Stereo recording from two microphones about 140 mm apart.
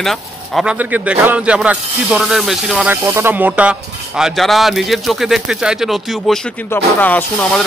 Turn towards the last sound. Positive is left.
turn(degrees=10)  # may be behind; listen again after turning